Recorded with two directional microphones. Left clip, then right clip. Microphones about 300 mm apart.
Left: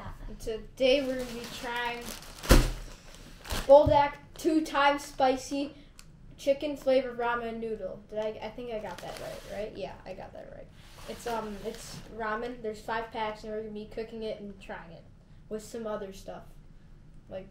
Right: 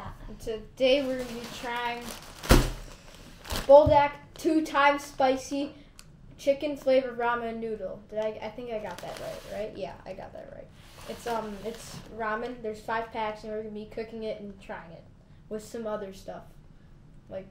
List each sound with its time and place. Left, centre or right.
0.4 s a woman's voice: centre
2.4 s a sound: centre
3.4 s a woman's voice: centre